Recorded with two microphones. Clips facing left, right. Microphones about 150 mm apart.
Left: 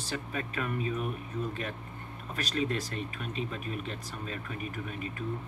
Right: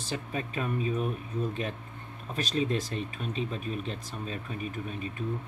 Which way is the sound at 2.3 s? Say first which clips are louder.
Right 3 dB; 20° right (ahead or behind).